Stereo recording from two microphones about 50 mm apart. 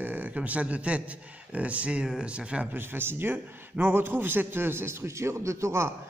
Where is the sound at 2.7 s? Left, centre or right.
Right.